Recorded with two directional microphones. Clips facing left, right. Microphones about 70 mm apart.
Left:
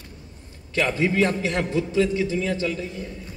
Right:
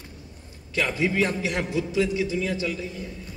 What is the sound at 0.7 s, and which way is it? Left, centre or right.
A man's voice, left.